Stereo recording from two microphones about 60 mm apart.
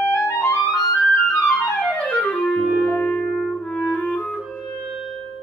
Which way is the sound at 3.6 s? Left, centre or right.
Centre.